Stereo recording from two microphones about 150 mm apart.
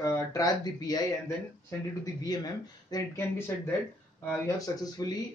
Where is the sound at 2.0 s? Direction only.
25° left (ahead or behind).